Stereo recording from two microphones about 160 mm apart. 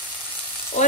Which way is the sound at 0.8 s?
45° left (ahead or behind).